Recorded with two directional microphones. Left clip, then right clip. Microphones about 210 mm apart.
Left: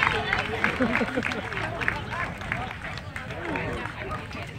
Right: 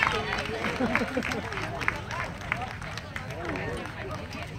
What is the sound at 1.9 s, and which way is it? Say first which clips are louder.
Run: left 1 dB; 20° left (ahead or behind).